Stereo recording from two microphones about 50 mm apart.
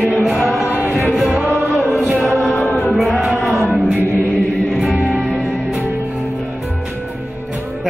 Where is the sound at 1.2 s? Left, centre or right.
Right.